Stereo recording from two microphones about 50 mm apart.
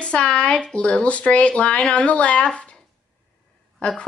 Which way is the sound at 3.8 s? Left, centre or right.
Left.